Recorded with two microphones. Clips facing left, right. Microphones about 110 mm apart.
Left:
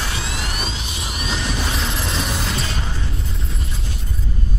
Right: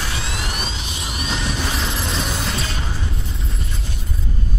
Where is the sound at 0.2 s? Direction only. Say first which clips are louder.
Even; centre (ahead or behind).